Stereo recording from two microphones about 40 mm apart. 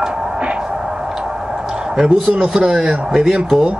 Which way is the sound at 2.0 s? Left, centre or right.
Centre.